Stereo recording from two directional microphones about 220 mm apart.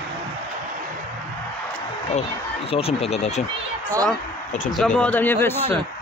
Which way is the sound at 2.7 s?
25° left (ahead or behind).